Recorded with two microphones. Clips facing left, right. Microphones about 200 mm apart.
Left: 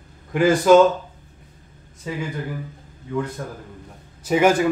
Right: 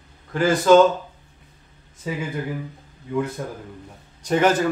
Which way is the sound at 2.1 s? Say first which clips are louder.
Right 1 dB; 5° right (ahead or behind).